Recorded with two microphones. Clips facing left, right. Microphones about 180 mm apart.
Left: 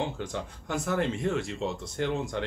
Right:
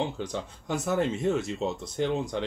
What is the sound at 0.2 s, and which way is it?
Speech, 20° right (ahead or behind).